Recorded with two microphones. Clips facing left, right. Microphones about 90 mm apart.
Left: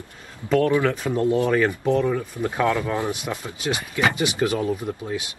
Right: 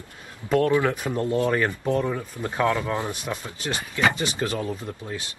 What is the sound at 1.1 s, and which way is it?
Speech, 15° left (ahead or behind).